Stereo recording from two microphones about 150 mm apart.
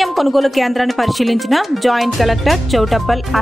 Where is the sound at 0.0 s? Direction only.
Centre (ahead or behind).